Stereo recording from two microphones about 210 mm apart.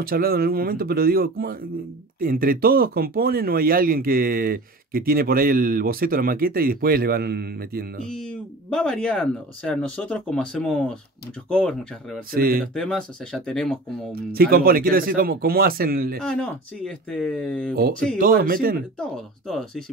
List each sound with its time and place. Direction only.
0.0 s speech: 45° right (ahead or behind)
8.2 s speech: 5° left (ahead or behind)
12.4 s speech: 45° right (ahead or behind)
12.7 s speech: 5° left (ahead or behind)
14.1 s speech: 45° right (ahead or behind)
16.2 s speech: 5° left (ahead or behind)
18.1 s speech: 40° right (ahead or behind)
18.9 s speech: centre (ahead or behind)